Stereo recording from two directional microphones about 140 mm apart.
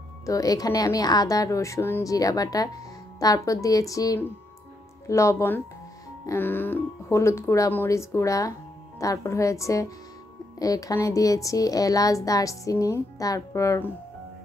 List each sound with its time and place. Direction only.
0.3 s speech: 25° left (ahead or behind)